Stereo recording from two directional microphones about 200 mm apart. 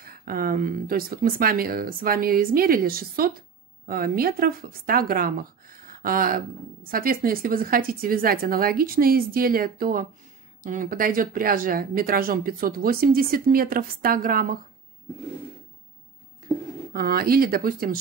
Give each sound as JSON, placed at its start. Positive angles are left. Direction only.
{"t": 0.0, "sound": "speech", "side_deg": -45}
{"t": 16.9, "sound": "speech", "side_deg": -50}